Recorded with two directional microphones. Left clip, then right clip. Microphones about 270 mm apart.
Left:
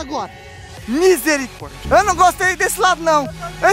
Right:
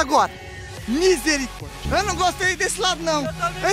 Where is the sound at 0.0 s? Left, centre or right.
Centre.